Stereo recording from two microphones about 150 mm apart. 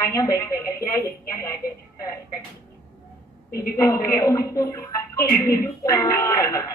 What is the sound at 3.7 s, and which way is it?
A woman's voice, 20° left (ahead or behind).